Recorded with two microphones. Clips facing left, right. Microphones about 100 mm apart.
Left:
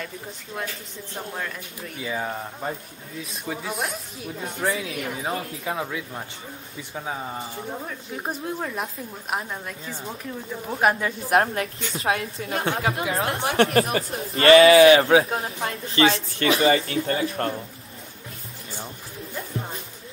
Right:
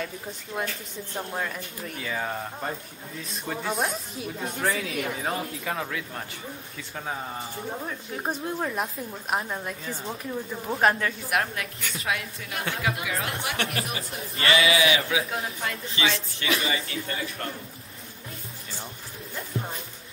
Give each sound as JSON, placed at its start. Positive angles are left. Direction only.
{"t": 0.5, "sound": "a woman's voice", "side_deg": -5}
{"t": 2.0, "sound": "a woman's voice", "side_deg": 10}
{"t": 8.1, "sound": "a woman's voice", "side_deg": 0}
{"t": 11.2, "sound": "a woman's voice", "side_deg": 35}
{"t": 16.0, "sound": "speech", "side_deg": 50}
{"t": 16.4, "sound": "a woman's voice", "side_deg": 35}